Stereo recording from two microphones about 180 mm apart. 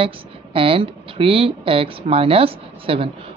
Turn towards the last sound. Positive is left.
turn(degrees=-30)  # may be behind; listen again after turning